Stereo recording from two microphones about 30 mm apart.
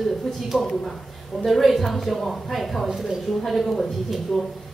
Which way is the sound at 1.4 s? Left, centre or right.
Centre.